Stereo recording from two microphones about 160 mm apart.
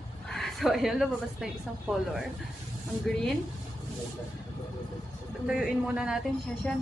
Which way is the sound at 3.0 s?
5° left (ahead or behind).